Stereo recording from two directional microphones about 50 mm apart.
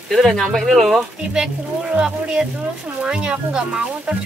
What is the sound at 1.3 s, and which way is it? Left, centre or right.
Speech, right.